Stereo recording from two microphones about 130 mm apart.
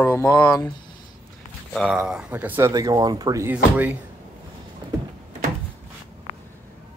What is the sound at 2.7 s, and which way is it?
Speech, 30° right (ahead or behind).